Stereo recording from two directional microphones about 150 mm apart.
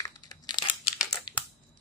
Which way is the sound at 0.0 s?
25° left (ahead or behind).